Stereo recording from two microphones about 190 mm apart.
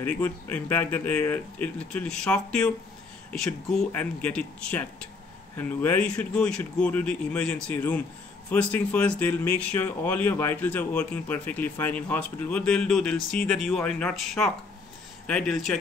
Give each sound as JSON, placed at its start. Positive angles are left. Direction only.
{"t": 0.0, "sound": "speech", "side_deg": 10}